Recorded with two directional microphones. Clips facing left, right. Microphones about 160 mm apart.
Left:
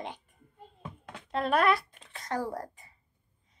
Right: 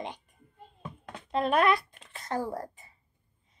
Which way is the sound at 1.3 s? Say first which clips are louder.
Right 1 dB; 20° right (ahead or behind).